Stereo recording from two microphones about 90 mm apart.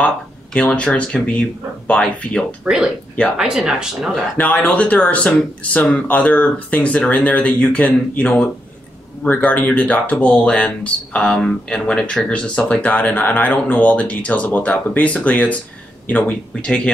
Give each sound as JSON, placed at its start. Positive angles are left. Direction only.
{"t": 0.0, "sound": "speech", "side_deg": 10}
{"t": 2.7, "sound": "speech", "side_deg": -5}
{"t": 4.4, "sound": "speech", "side_deg": 15}